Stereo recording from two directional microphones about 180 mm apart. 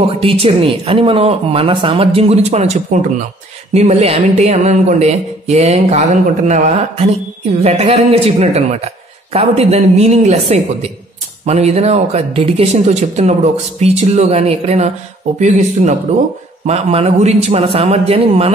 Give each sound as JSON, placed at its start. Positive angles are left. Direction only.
{"t": 0.0, "sound": "speech", "side_deg": -30}